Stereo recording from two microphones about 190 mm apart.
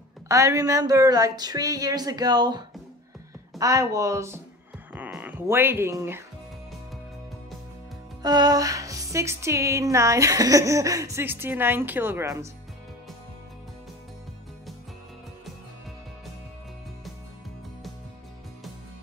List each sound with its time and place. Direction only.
0.3 s speech: 15° right (ahead or behind)
8.2 s speech: 20° right (ahead or behind)